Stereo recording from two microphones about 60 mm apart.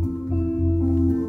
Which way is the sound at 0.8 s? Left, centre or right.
Left.